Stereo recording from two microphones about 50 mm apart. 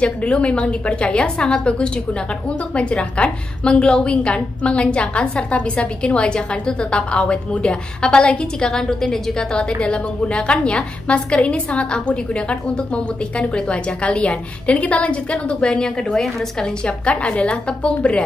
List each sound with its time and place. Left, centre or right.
0.0 s a woman's voice: left
16.1 s a woman's voice: centre
16.8 s a woman's voice: left